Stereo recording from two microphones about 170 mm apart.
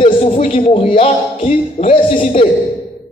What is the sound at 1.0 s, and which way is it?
Speech, 45° left (ahead or behind).